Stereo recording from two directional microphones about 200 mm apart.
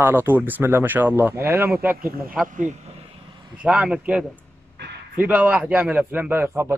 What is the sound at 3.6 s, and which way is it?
A man's voice, 5° right (ahead or behind).